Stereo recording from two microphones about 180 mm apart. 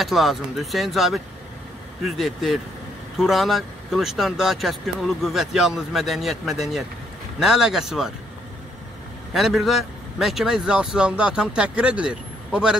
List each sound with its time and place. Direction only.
0.0 s speech: centre (ahead or behind)
9.3 s speech: centre (ahead or behind)